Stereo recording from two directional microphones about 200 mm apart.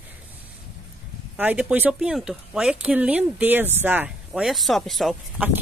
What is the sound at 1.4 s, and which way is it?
Speech, 5° right (ahead or behind).